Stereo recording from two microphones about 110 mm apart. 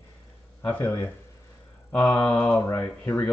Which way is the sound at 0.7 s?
20° left (ahead or behind).